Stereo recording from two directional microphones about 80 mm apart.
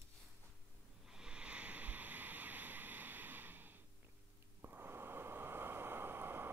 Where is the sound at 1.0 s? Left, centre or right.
Centre.